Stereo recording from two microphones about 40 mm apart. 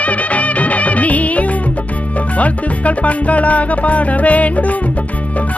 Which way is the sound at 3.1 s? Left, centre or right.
Left.